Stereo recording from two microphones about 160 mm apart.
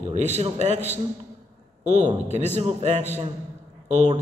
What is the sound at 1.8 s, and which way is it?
A man's voice, 45° right (ahead or behind).